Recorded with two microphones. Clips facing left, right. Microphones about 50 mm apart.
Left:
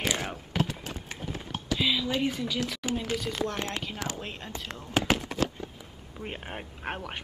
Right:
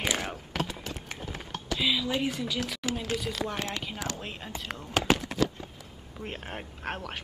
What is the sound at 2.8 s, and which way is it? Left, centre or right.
Speech, left.